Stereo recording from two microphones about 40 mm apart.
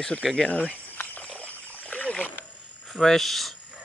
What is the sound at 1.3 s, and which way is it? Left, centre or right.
Splash, left.